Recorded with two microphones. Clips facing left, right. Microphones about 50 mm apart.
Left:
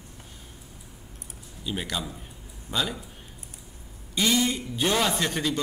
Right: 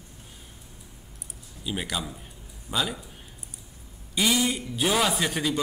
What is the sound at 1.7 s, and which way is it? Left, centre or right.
A man's voice, centre.